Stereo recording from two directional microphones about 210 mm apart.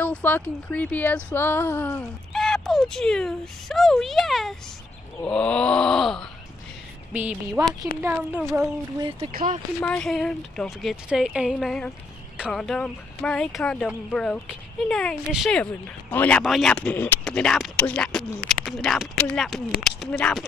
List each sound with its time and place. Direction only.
0.0 s speech: 5° left (ahead or behind); by 9.1 s 15° right (ahead or behind)
9.3 s speech: 40° right (ahead or behind)
9.8 s speech: 5° left (ahead or behind)